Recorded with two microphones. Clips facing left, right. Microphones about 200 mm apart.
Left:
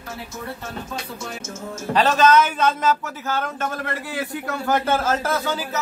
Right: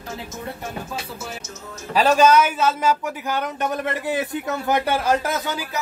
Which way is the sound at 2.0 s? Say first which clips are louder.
Right 1 dB; 10° right (ahead or behind).